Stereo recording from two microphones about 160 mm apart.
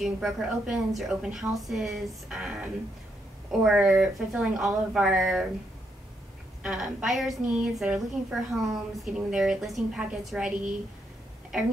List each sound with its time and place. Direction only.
0.0 s a woman's voice: centre (ahead or behind)
6.6 s a woman's voice: 5° right (ahead or behind)